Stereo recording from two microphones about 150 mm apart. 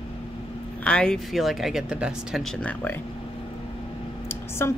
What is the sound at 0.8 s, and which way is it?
Speech, 5° left (ahead or behind).